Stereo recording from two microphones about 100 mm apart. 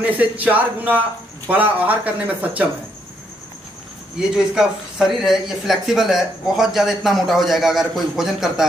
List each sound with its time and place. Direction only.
0.0 s speech: 15° right (ahead or behind)
4.2 s speech: 5° right (ahead or behind)